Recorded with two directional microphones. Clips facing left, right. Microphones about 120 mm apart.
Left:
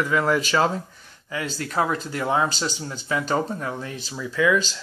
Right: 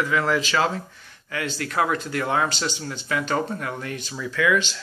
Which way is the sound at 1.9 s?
30° left (ahead or behind).